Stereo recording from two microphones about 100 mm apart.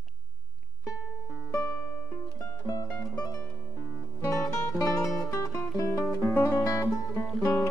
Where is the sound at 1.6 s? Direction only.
15° left (ahead or behind).